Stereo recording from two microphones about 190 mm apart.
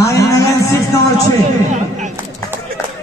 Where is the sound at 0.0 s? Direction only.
15° left (ahead or behind).